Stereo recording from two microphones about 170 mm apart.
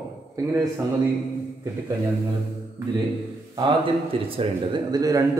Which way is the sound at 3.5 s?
25° right (ahead or behind).